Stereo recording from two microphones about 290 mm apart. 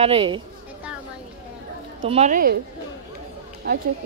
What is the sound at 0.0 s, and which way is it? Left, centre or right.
Speech, centre.